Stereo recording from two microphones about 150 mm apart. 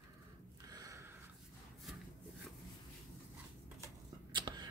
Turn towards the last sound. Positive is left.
turn(degrees=-30)  # may be behind; listen again after turning